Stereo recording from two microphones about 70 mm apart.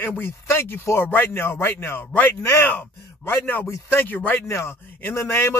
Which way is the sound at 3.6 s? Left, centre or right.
Left.